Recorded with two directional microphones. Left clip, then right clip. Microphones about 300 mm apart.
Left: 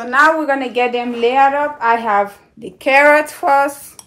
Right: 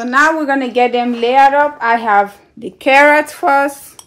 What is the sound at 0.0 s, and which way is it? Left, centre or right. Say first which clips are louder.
A woman's voice: even; right.